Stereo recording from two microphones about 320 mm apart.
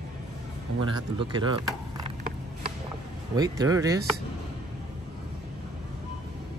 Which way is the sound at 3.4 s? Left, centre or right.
Centre.